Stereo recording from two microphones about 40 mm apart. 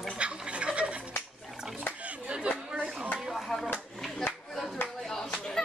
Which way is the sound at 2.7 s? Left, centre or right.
Right.